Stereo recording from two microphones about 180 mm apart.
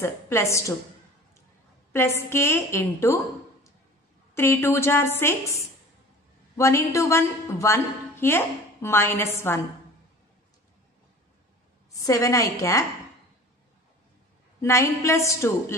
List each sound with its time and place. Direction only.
0.0 s a woman's voice: 15° left (ahead or behind)
1.9 s a woman's voice: 15° left (ahead or behind)
4.4 s a woman's voice: 15° left (ahead or behind)
6.5 s a woman's voice: 15° left (ahead or behind)
11.9 s a woman's voice: 20° left (ahead or behind)
14.6 s a woman's voice: 15° left (ahead or behind)